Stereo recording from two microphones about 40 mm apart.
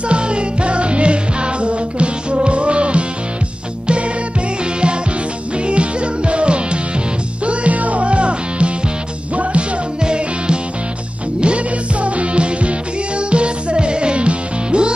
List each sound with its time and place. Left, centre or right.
0.1 s music: right
5.7 s music: right